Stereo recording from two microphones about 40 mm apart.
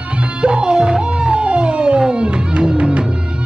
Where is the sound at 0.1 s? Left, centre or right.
Right.